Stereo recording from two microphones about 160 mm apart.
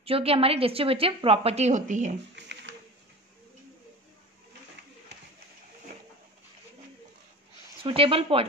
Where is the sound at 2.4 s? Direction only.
90° right.